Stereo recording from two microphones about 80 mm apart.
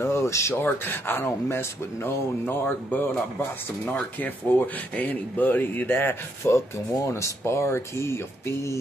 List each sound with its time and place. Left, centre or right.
0.0 s speech: left